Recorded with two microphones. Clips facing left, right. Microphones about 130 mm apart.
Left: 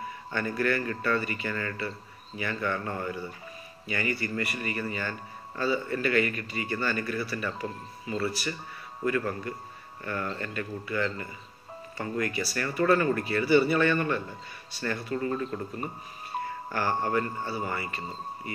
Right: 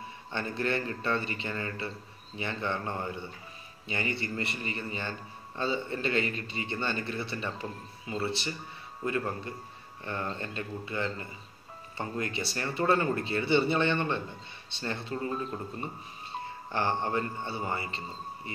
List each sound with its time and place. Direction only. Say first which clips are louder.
0.3 s speech: left 3 dB; 25° right (ahead or behind)